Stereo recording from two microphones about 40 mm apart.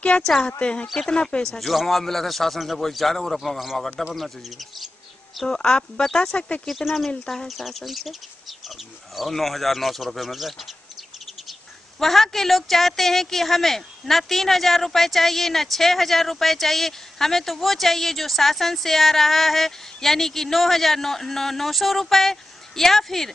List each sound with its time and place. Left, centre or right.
0.1 s speech: centre
0.5 s speech: left
0.9 s speech: centre
1.6 s a woman's voice: centre
5.5 s speech: left
6.7 s a woman's voice: centre
12.0 s a woman's voice: centre